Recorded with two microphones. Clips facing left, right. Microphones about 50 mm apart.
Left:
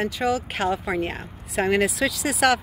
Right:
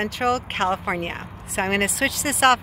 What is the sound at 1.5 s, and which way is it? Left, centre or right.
Speech, right.